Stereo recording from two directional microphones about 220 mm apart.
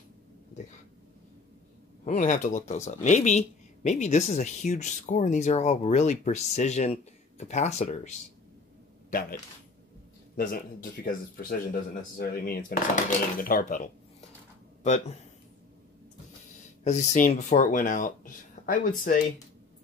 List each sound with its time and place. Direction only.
2.0 s speech: 35° left (ahead or behind)
10.3 s speech: 40° left (ahead or behind)
16.8 s speech: 30° left (ahead or behind)